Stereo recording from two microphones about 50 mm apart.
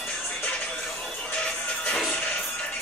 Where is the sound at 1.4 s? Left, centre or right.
Left.